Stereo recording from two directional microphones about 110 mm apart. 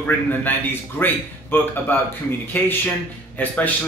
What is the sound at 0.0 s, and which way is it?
A man's voice, 15° left (ahead or behind).